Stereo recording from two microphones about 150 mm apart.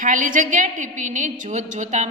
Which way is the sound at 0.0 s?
60° right (ahead or behind).